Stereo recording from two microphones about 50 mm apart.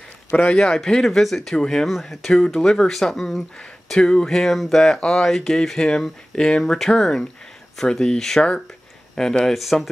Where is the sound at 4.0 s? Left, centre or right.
Centre.